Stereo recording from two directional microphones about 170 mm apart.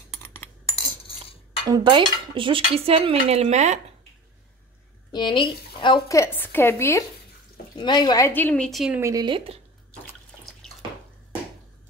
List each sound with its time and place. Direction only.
0.7 s cutlery: 30° left (ahead or behind)
1.7 s dishes: 30° right (ahead or behind); by 3.8 s 45° right (ahead or behind)
5.1 s speech: 25° left (ahead or behind)
6.1 s a woman's voice: 15° left (ahead or behind)
7.7 s speech: 25° left (ahead or behind)
8.3 s a woman's voice: 10° left (ahead or behind)
9.0 s speech: 25° right (ahead or behind)